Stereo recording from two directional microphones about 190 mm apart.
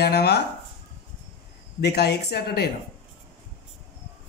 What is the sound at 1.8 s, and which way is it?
Speech, 60° left (ahead or behind).